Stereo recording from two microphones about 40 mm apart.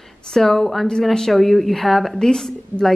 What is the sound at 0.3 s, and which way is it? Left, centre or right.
A woman's voice, centre.